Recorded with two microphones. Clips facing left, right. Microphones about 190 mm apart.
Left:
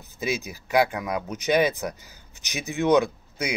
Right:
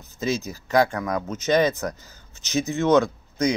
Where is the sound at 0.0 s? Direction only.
15° left (ahead or behind).